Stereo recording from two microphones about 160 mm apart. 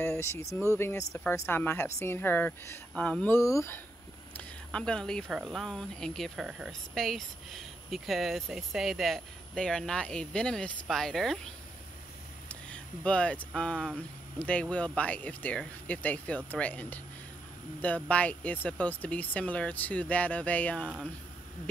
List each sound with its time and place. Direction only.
0.0 s speech: 15° left (ahead or behind)
4.4 s speech: 5° left (ahead or behind)
12.4 s a sound: 5° left (ahead or behind)
13.6 s speech: 5° left (ahead or behind)